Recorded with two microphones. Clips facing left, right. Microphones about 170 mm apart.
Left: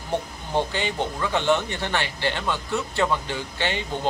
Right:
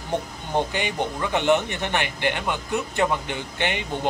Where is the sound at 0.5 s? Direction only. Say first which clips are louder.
Even; 15° right (ahead or behind).